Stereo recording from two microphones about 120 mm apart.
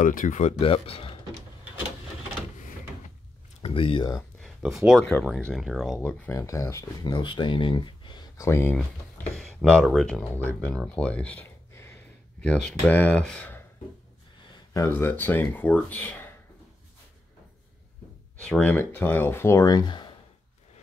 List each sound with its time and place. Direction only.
0.0 s speech: 90° left; by 1.1 s 50° left (ahead or behind)
3.6 s speech: 45° left (ahead or behind)
4.4 s a sound: centre (ahead or behind)
5.2 s speech: 5° left (ahead or behind)
6.0 s speech: 15° left (ahead or behind)
7.1 s speech: 40° left (ahead or behind)
8.4 s speech: 20° left (ahead or behind)
9.4 s speech: centre (ahead or behind)
10.2 s speech: 15° left (ahead or behind)
12.4 s speech: 10° left (ahead or behind)
14.7 s speech: 20° left (ahead or behind)
18.4 s speech: 10° left (ahead or behind); by 20.1 s 35° left (ahead or behind)